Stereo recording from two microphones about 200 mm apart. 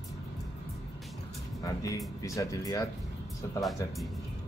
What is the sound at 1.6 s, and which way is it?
Speech, 15° left (ahead or behind).